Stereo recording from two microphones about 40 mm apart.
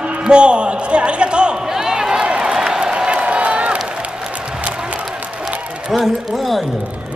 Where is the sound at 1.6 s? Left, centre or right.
Centre.